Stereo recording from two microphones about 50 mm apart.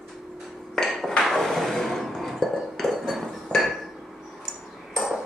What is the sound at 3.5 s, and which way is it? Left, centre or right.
Hammer, centre.